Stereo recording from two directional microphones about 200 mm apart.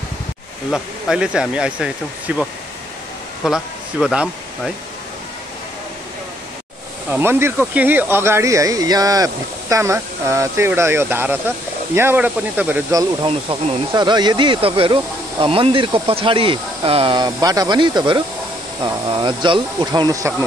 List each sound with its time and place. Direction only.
0.7 s speech: 5° right (ahead or behind)
3.4 s speech: 5° right (ahead or behind)
7.1 s speech: 10° right (ahead or behind)
13.2 s speech: 25° right (ahead or behind)